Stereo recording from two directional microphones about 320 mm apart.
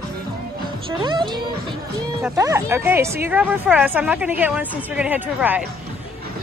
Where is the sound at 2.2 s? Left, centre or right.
Centre.